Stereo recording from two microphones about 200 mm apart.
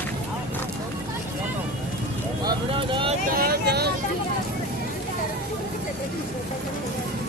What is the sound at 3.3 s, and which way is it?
Vehicle, 55° right (ahead or behind).